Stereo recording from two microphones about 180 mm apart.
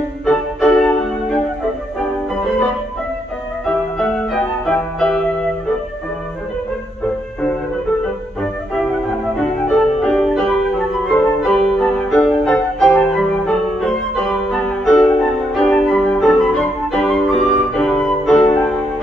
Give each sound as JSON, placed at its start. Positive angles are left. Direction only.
{"t": 0.2, "sound": "music", "side_deg": 5}
{"t": 2.0, "sound": "music", "side_deg": 5}
{"t": 8.7, "sound": "music", "side_deg": 5}